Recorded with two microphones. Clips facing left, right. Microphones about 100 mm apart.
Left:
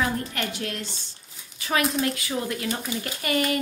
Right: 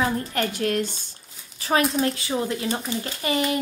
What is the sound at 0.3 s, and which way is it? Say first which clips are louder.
Speech: right 6 dB; 40° right (ahead or behind).